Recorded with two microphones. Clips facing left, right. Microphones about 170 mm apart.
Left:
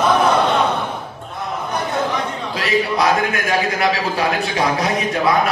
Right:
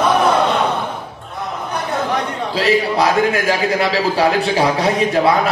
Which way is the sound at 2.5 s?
30° right (ahead or behind).